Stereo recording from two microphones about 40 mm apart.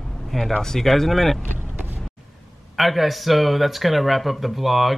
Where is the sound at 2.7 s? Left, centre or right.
Centre.